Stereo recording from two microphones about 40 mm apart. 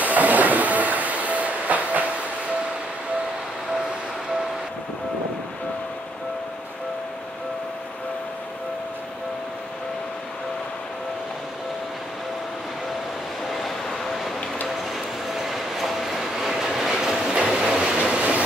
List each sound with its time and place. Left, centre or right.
0.0 s train: right
13.5 s a sound: centre
15.2 s train: centre; by 18.2 s right